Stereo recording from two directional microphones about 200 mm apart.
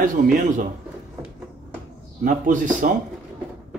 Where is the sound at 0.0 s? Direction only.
40° right (ahead or behind).